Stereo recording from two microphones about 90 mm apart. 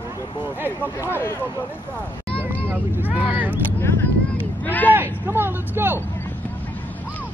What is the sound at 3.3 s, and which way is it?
Speech, 20° right (ahead or behind).